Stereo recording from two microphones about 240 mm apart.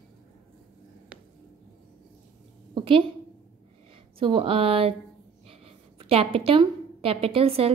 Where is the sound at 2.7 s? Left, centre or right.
Right.